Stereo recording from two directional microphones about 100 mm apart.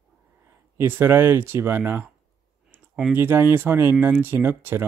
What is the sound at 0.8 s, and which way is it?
Speech, 25° right (ahead or behind).